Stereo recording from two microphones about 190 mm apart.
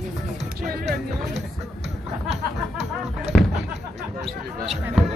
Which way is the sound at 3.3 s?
5° left (ahead or behind).